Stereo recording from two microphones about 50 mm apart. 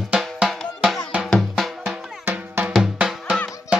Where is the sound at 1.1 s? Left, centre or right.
Right.